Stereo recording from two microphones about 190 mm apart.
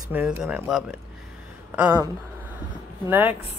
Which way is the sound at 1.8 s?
20° right (ahead or behind).